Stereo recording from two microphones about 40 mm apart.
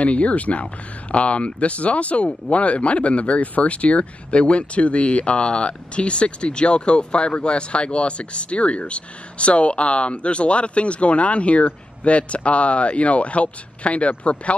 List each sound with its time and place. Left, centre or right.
0.0 s speech: left